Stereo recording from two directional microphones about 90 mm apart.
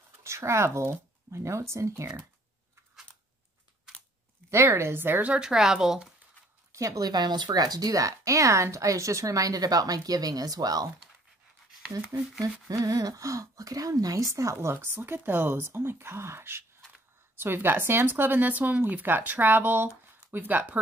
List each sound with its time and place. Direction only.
0.2 s speech: 30° right (ahead or behind)
4.5 s speech: 30° right (ahead or behind); by 6.1 s 5° right (ahead or behind)
6.7 s a woman's voice: 40° right (ahead or behind)
12.6 s speech: 40° right (ahead or behind); by 20.8 s 20° right (ahead or behind)